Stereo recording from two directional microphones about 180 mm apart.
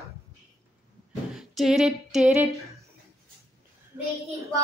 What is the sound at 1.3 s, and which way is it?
Female singing, centre (ahead or behind).